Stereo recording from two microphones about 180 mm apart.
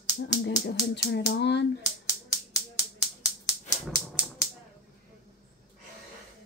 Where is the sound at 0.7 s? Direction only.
70° left (ahead or behind).